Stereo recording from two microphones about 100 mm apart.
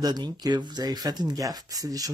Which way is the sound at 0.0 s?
40° right (ahead or behind).